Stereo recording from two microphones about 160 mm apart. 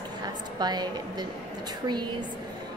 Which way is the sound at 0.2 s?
25° right (ahead or behind).